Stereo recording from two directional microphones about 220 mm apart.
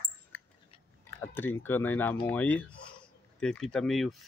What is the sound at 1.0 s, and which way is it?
Speech, 10° left (ahead or behind).